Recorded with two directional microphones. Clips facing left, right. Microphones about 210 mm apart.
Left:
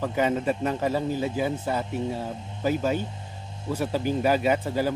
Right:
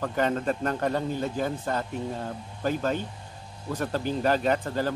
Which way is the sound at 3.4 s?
25° left (ahead or behind).